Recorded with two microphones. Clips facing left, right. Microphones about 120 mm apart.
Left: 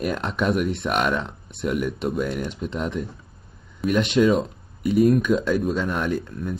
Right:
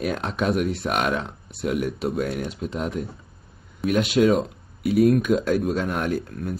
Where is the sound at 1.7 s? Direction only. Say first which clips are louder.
Even; 45° right (ahead or behind).